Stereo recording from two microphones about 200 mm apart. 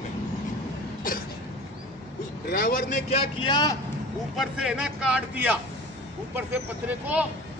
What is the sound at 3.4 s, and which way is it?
Speech, 20° left (ahead or behind).